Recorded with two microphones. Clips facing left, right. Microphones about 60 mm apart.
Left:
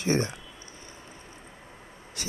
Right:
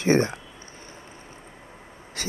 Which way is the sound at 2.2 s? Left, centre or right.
Right.